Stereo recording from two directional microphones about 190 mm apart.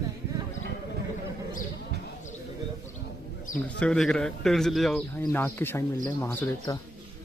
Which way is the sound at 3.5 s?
45° left (ahead or behind).